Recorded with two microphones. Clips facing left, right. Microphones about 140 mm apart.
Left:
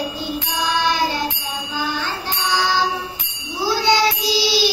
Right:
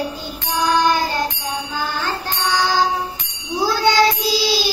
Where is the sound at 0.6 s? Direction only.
50° right (ahead or behind).